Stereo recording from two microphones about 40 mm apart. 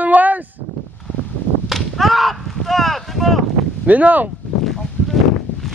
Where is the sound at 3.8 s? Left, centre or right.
Right.